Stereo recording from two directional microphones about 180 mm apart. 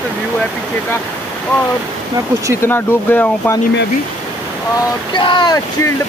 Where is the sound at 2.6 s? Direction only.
10° left (ahead or behind).